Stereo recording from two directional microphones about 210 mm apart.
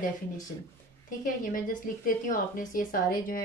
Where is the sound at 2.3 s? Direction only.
40° left (ahead or behind).